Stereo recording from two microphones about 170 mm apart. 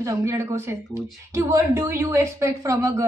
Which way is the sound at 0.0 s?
15° right (ahead or behind).